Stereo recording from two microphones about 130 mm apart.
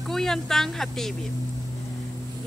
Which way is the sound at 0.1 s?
5° left (ahead or behind).